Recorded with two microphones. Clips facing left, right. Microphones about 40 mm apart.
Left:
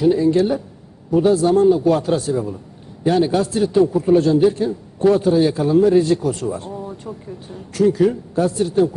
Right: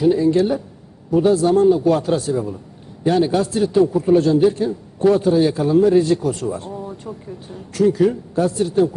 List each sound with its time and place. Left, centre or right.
0.0 s a man's voice: centre